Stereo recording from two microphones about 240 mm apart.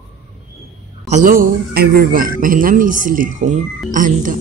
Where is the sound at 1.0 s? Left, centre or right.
Right.